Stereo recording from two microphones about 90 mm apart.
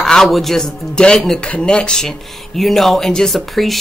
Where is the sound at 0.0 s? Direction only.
5° left (ahead or behind).